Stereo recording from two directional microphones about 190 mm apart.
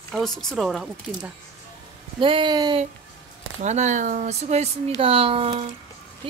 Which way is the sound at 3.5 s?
40° right (ahead or behind).